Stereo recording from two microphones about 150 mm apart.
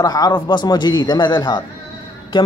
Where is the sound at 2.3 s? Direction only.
30° left (ahead or behind).